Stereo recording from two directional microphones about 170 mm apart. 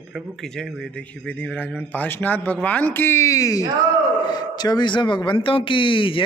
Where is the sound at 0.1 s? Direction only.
Centre (ahead or behind).